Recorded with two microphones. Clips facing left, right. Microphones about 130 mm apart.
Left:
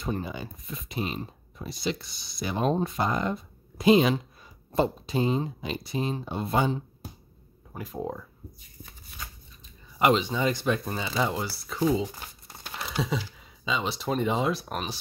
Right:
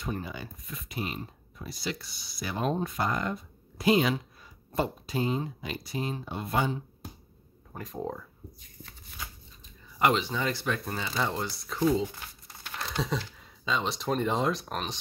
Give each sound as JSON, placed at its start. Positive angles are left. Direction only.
{"t": 0.0, "sound": "speech", "side_deg": 25}
{"t": 7.7, "sound": "speech", "side_deg": 5}
{"t": 9.9, "sound": "speech", "side_deg": 20}